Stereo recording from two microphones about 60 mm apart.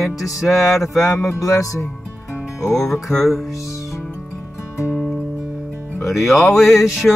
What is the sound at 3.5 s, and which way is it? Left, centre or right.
Music, left.